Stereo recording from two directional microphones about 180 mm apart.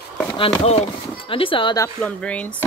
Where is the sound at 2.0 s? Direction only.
5° left (ahead or behind).